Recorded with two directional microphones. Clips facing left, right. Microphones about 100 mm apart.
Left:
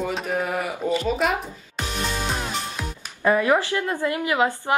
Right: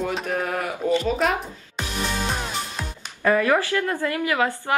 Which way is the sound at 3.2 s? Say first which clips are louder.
Even; 20° left (ahead or behind).